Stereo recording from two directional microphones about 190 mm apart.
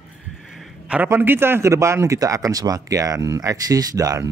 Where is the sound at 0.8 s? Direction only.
10° right (ahead or behind).